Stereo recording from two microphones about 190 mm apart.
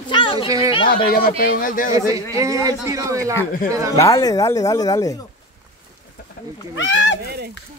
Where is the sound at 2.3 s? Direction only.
15° right (ahead or behind).